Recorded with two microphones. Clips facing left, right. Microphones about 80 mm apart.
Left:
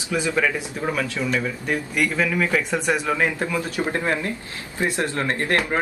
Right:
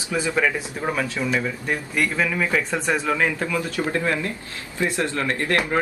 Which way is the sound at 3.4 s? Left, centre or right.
Left.